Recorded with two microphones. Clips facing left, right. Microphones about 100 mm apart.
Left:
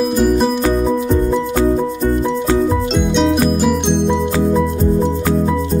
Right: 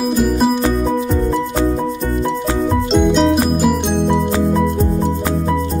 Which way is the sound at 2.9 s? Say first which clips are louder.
Right 2 dB; centre (ahead or behind).